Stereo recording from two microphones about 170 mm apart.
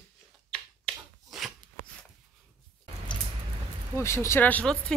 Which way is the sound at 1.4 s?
5° right (ahead or behind).